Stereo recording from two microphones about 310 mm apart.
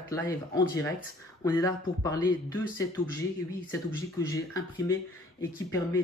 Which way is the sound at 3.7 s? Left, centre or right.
Centre.